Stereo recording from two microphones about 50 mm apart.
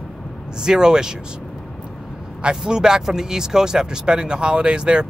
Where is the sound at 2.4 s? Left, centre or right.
Centre.